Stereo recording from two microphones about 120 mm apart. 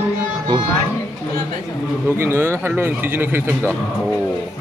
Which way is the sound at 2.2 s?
20° right (ahead or behind).